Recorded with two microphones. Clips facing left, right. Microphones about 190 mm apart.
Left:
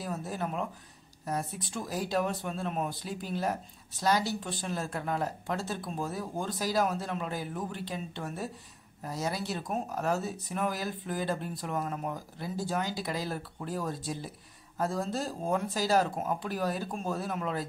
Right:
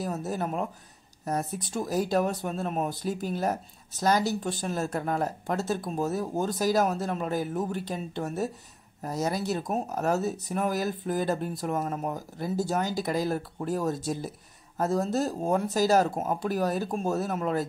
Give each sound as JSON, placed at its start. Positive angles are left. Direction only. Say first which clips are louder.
{"t": 0.0, "sound": "speech", "louder": "right 4 dB", "side_deg": -40}